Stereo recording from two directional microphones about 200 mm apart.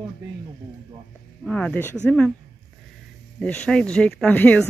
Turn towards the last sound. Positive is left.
turn(degrees=5)  # may be behind; listen again after turning